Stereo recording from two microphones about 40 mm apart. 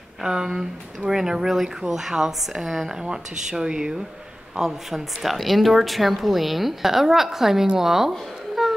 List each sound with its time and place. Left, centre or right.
0.2 s speech: centre
4.6 s a woman's voice: centre
8.1 s babbling: centre